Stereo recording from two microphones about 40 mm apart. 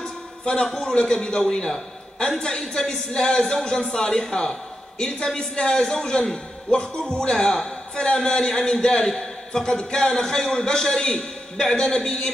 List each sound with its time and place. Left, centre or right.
0.5 s a man's voice: left